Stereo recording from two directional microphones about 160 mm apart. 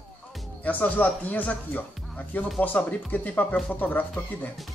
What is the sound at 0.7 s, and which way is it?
Speech, 10° left (ahead or behind).